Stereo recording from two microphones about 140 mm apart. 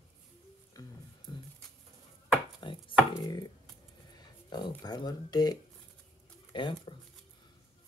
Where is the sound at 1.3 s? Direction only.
35° left (ahead or behind).